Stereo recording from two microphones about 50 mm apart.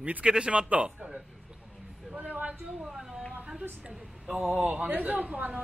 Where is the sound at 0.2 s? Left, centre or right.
Centre.